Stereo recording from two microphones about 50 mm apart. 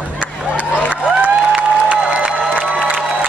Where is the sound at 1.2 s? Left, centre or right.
Right.